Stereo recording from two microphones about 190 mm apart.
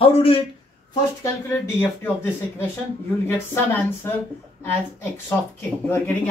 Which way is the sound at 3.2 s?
10° left (ahead or behind).